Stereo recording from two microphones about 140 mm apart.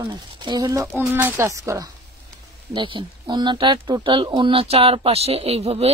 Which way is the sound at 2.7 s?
35° right (ahead or behind).